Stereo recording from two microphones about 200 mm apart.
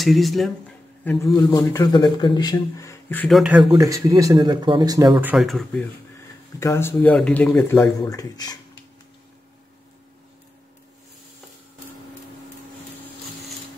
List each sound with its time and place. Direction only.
0.0 s speech: centre (ahead or behind)
1.3 s speech: 15° left (ahead or behind); by 3.6 s 5° right (ahead or behind)
3.7 s speech: 15° right (ahead or behind); by 5.9 s centre (ahead or behind)
6.6 s speech: 15° left (ahead or behind)
8.0 s speech: 20° left (ahead or behind)